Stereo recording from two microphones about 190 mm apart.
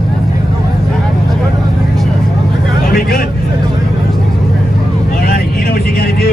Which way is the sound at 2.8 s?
50° left (ahead or behind).